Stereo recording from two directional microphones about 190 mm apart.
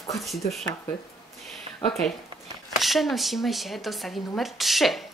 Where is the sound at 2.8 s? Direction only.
Centre (ahead or behind).